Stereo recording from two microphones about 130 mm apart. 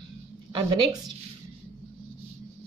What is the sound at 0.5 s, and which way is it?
Speech, 40° right (ahead or behind).